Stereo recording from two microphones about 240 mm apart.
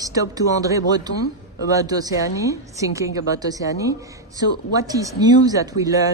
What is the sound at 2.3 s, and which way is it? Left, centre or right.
Speech, centre.